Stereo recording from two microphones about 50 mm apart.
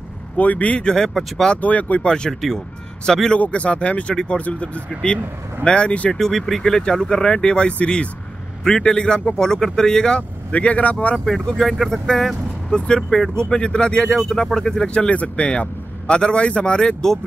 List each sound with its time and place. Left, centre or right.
0.4 s speech: left
0.8 s speech: centre
1.6 s speech: left
2.0 s speech: centre
3.3 s speech: left
4.1 s speech: centre
4.4 s speech: left
6.1 s speech: centre; by 11.1 s left
11.1 s speech: centre
12.7 s speech: centre
15.0 s speech: left